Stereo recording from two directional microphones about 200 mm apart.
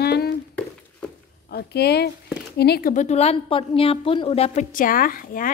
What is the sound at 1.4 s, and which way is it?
A woman's voice, 55° left (ahead or behind).